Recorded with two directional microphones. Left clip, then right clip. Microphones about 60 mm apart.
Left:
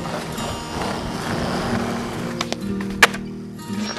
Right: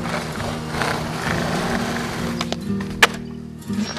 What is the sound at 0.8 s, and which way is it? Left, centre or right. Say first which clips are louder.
Vehicle: right 5 dB; right.